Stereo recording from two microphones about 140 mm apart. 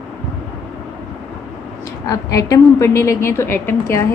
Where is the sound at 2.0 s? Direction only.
25° left (ahead or behind).